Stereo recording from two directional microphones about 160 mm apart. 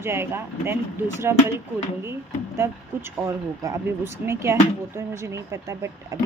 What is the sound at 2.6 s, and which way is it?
Speech, 15° right (ahead or behind).